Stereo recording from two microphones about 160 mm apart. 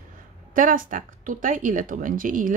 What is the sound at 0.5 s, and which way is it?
Speech, 60° right (ahead or behind).